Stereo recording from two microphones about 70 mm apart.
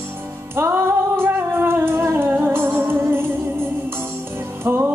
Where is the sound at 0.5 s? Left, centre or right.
Right.